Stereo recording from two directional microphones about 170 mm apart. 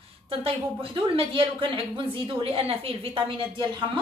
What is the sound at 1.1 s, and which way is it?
A woman's voice, 30° right (ahead or behind).